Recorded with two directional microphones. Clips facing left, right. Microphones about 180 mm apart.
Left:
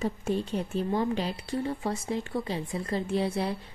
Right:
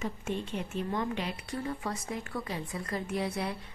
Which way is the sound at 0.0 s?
35° left (ahead or behind).